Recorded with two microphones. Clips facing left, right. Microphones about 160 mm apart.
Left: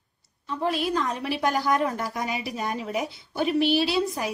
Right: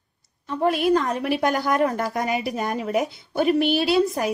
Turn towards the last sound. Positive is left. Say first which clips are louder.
# right 4 dB
turn(degrees=-55)  # may be behind; listen again after turning